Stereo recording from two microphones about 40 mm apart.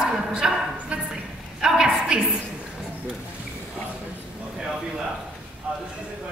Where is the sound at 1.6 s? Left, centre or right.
Centre.